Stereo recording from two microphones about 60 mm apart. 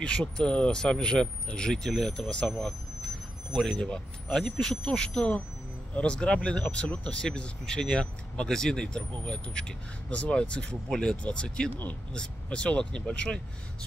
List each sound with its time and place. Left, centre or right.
0.4 s speech: centre
3.6 s speech: centre